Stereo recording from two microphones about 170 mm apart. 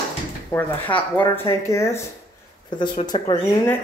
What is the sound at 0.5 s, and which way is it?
Speech, 10° left (ahead or behind).